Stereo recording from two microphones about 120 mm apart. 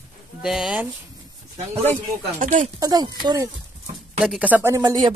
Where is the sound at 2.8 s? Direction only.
30° right (ahead or behind).